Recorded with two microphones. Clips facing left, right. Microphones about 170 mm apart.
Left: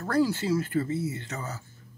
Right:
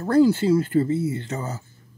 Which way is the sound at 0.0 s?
25° right (ahead or behind).